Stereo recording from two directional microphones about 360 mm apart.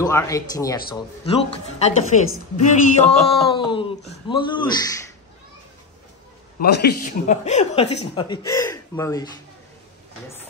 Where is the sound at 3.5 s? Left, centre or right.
Centre.